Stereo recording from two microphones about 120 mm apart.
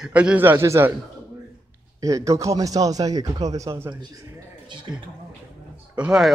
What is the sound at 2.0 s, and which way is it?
Speech, 25° right (ahead or behind).